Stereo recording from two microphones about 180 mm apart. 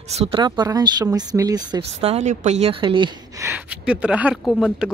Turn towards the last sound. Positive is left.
turn(degrees=-5)  # may be behind; listen again after turning